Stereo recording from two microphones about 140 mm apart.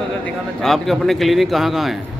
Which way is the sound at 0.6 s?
Centre (ahead or behind).